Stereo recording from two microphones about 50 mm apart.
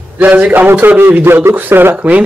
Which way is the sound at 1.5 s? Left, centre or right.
Right.